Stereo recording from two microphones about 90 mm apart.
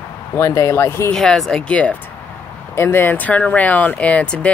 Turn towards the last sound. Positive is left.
turn(degrees=15)  # may be behind; listen again after turning